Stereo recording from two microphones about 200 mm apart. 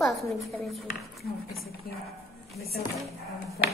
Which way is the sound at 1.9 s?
50° left (ahead or behind).